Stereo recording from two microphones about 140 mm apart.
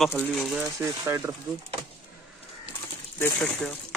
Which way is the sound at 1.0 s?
20° right (ahead or behind).